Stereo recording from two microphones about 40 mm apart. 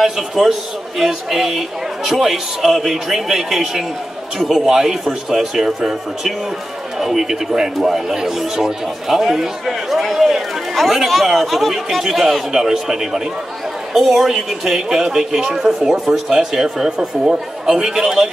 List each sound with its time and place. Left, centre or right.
0.0 s a man's voice: centre